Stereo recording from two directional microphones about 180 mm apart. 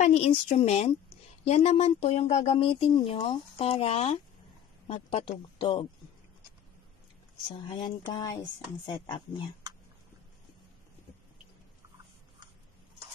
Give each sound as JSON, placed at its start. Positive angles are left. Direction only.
{"t": 0.0, "sound": "speech", "side_deg": 40}
{"t": 7.6, "sound": "speech", "side_deg": 25}